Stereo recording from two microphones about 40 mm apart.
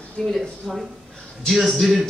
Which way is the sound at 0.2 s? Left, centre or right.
Centre.